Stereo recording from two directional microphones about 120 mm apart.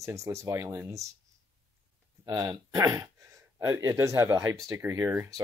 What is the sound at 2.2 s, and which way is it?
Speech, 30° right (ahead or behind).